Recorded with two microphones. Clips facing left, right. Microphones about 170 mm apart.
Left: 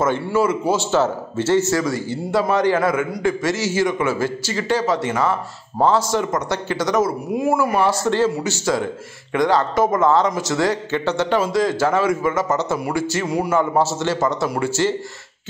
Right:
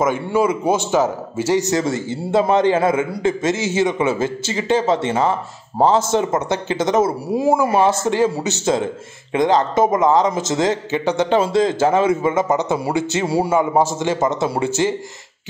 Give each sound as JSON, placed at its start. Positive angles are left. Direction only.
{"t": 0.0, "sound": "speech", "side_deg": -15}
{"t": 13.6, "sound": "a man's voice", "side_deg": -15}